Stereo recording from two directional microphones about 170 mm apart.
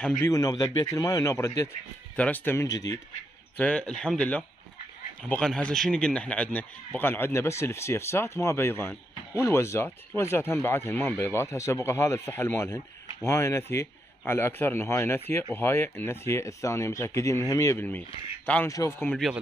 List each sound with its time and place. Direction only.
0.2 s a man's voice: 20° left (ahead or behind)
3.5 s a man's voice: 5° left (ahead or behind)